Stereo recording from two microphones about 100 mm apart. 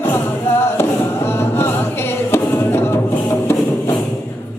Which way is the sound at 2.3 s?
25° left (ahead or behind).